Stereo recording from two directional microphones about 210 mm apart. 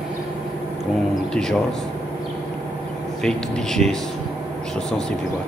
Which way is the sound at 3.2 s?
5° left (ahead or behind).